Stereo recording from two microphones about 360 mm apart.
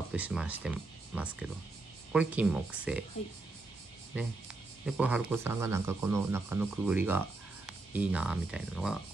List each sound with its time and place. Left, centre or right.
0.1 s speech: centre
4.1 s speech: centre